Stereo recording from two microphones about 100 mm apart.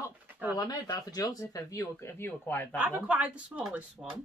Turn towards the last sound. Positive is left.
turn(degrees=-5)  # may be behind; listen again after turning